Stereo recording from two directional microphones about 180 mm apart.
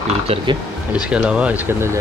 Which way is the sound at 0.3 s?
30° right (ahead or behind).